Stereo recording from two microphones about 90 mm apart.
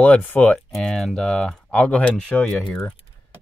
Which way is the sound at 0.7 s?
5° left (ahead or behind).